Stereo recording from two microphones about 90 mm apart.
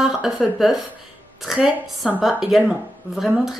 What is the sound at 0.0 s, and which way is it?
A woman's voice, 5° right (ahead or behind).